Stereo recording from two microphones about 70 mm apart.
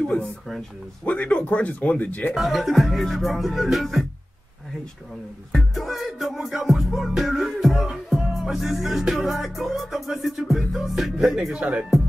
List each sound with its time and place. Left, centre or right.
0.0 s speech: centre
2.3 s music: centre
5.5 s music: centre